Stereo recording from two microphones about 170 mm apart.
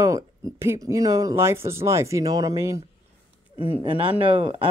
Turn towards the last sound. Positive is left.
turn(degrees=-30)  # may be behind; listen again after turning